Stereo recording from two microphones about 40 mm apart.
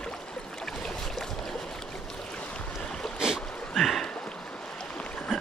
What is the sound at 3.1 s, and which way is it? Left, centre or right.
Boat, centre.